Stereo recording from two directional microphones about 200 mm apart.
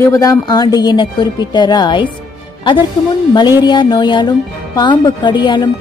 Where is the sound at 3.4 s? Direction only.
20° left (ahead or behind).